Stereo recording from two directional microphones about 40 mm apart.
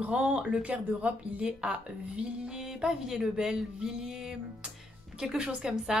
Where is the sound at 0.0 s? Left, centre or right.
Right.